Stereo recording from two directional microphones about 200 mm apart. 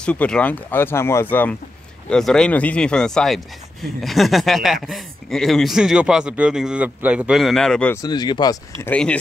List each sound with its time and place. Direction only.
0.0 s a man's voice: 5° left (ahead or behind)
8.0 s speech: 20° left (ahead or behind)
8.8 s speech: 5° left (ahead or behind)